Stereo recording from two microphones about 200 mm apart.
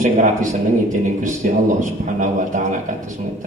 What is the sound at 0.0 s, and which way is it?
A man's voice, 40° right (ahead or behind).